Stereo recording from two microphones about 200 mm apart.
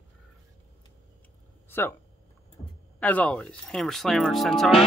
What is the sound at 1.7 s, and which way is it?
Speech, 10° left (ahead or behind).